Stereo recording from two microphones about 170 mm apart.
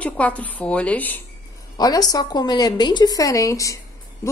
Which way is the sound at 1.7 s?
20° left (ahead or behind).